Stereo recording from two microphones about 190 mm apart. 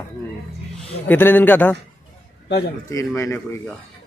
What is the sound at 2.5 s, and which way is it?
Speech, 60° left (ahead or behind).